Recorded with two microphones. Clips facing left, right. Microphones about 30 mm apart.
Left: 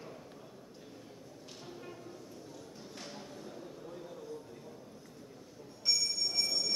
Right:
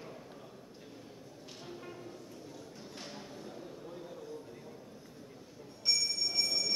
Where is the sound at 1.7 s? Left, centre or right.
Centre.